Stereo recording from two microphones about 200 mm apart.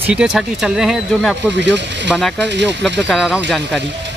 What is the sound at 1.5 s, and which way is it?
Speech, 60° right (ahead or behind).